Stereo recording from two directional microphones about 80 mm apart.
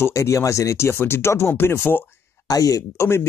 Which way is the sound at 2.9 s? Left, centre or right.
Left.